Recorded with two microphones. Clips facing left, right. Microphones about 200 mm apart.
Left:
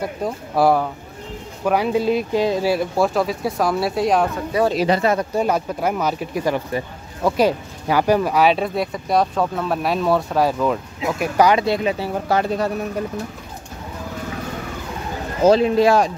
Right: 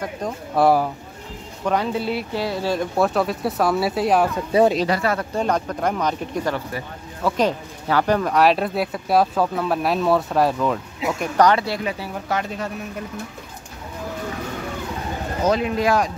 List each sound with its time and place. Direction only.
0.0 s speech: 5° left (ahead or behind)
4.8 s speech: 20° left (ahead or behind)
5.3 s speech: 10° left (ahead or behind)
11.6 s speech: 25° left (ahead or behind)
15.4 s speech: 30° left (ahead or behind)